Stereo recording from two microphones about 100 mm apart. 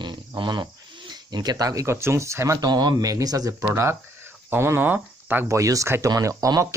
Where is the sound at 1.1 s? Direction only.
45° right (ahead or behind); by 2.7 s 30° right (ahead or behind).